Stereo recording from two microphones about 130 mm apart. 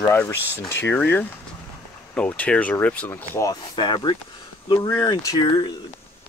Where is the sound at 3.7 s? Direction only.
35° left (ahead or behind).